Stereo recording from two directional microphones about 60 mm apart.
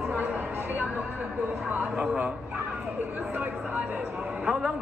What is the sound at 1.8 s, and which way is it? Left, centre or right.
Speech, centre.